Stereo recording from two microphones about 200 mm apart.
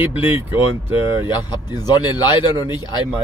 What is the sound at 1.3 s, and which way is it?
A man's voice, 20° left (ahead or behind).